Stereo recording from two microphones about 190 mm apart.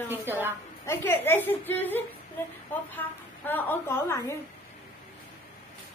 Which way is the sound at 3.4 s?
10° left (ahead or behind).